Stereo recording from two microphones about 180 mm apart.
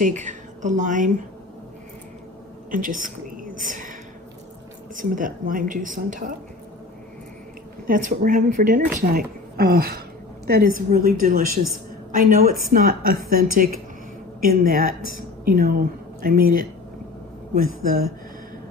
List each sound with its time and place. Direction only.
0.0 s a woman's voice: 45° right (ahead or behind)
2.7 s a woman's voice: 50° right (ahead or behind)
4.9 s a woman's voice: 45° right (ahead or behind)
7.8 s a woman's voice: 50° right (ahead or behind)